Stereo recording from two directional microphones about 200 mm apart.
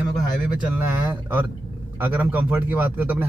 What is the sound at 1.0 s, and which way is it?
Speech, 10° right (ahead or behind).